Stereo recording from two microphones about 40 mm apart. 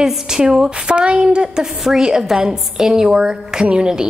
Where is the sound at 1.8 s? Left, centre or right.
Centre.